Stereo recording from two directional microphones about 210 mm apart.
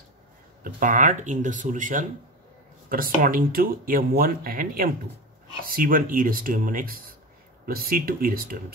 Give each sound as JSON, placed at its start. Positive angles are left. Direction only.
{"t": 0.7, "sound": "speech", "side_deg": -40}